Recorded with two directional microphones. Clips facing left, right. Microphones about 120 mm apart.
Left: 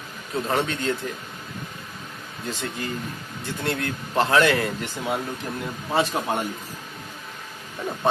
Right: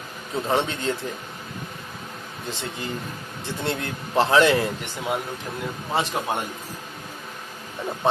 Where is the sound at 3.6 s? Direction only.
25° right (ahead or behind).